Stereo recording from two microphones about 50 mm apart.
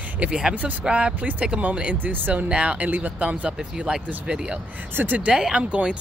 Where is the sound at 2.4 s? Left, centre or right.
Right.